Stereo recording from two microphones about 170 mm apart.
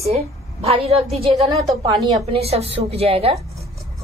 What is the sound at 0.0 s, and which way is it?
A woman's voice, 35° right (ahead or behind).